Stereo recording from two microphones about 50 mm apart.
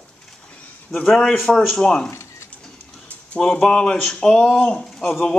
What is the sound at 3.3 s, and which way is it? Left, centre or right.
A man's voice, centre.